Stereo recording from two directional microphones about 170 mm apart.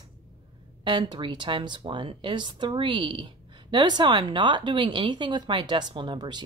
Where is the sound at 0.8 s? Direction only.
25° right (ahead or behind).